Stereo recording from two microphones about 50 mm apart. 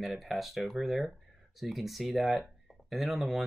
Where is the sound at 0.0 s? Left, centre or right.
Centre.